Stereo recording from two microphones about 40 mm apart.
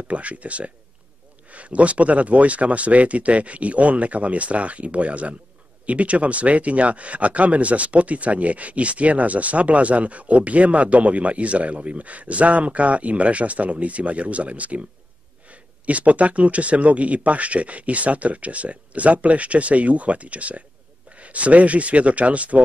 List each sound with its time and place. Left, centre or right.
0.1 s speech: right